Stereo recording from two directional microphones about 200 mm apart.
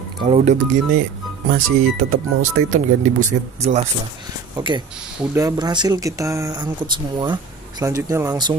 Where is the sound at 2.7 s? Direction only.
40° right (ahead or behind).